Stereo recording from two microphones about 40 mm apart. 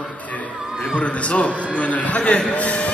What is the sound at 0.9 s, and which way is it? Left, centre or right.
A man's voice, left.